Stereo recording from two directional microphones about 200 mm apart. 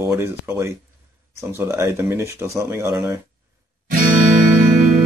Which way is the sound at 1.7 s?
10° right (ahead or behind).